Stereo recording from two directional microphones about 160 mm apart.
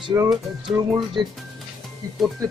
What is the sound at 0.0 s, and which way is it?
Speech, 20° right (ahead or behind).